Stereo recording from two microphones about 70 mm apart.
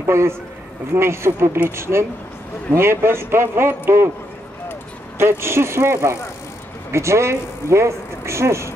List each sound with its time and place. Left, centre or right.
0.0 s a man's voice: right
5.2 s a man's voice: right